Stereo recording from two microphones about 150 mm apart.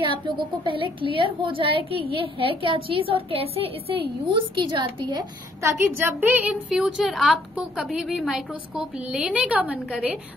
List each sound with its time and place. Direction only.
0.0 s a woman's voice: 35° right (ahead or behind)
5.6 s a woman's voice: 20° right (ahead or behind)